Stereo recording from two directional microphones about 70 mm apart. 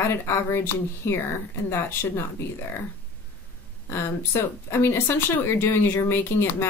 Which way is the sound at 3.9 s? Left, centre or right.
Left.